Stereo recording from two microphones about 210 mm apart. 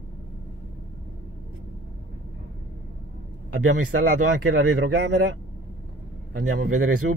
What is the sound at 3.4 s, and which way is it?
Speech, 90° right.